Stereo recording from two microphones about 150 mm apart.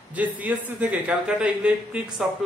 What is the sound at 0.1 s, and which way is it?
A man's voice, 10° right (ahead or behind).